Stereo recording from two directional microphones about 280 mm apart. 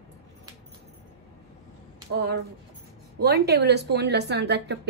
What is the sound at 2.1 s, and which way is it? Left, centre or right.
A woman's voice, right.